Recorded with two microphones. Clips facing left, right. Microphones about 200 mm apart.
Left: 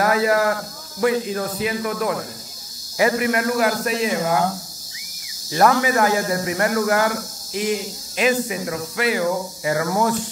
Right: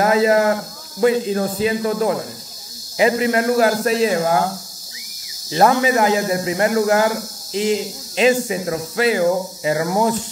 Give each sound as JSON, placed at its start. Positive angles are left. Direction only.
{"t": 0.0, "sound": "a sound", "side_deg": -25}
{"t": 1.0, "sound": "speech", "side_deg": -25}
{"t": 5.5, "sound": "speech", "side_deg": -25}